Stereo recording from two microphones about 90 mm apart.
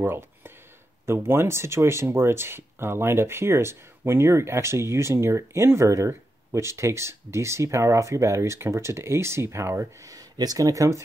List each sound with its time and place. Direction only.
0.0 s speech: 25° right (ahead or behind)